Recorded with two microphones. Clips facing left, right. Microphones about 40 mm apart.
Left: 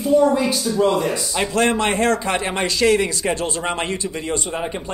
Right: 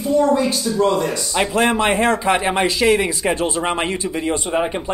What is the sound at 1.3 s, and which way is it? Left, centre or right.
Speech, centre.